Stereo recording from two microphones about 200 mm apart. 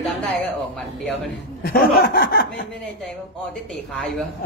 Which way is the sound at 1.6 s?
50° left (ahead or behind).